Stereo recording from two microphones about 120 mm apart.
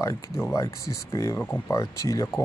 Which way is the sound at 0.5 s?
25° left (ahead or behind).